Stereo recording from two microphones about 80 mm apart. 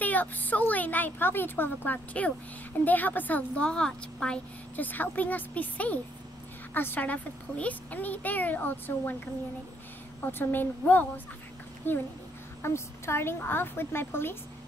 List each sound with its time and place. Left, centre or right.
0.0 s a child's voice: left
4.7 s a child's voice: left
10.2 s a child's voice: left